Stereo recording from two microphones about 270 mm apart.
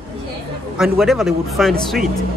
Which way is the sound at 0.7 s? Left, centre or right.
Centre.